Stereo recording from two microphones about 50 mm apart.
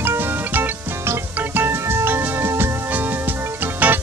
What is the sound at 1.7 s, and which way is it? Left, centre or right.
Music, right.